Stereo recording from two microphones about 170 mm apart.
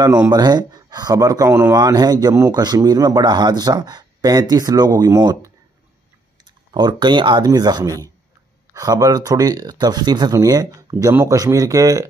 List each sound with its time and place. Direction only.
0.3 s speech: 25° right (ahead or behind)
6.7 s speech: 25° right (ahead or behind)